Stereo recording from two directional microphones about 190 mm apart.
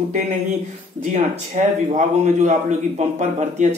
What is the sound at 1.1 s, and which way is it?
Speech, 40° right (ahead or behind).